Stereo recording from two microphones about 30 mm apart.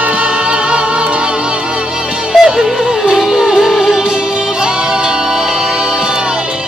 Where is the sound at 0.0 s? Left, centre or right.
Right.